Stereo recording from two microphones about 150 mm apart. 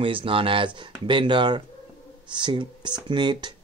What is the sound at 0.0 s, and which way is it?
Speech, 35° right (ahead or behind).